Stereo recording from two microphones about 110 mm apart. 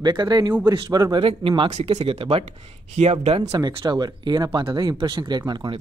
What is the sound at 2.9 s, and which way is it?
Speech, 80° right.